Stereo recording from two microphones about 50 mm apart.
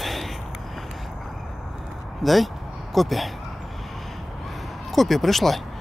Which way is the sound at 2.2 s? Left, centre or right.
Centre.